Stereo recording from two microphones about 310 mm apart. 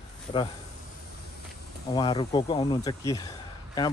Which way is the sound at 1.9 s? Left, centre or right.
Centre.